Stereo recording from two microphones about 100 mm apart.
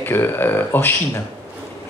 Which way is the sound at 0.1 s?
20° left (ahead or behind).